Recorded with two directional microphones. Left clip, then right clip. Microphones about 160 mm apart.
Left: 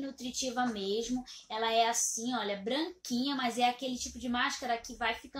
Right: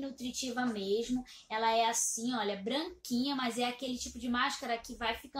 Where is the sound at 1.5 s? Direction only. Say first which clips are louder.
Left 1 dB; 10° left (ahead or behind).